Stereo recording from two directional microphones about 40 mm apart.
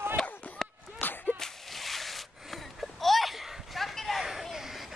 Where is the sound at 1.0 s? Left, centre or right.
Left.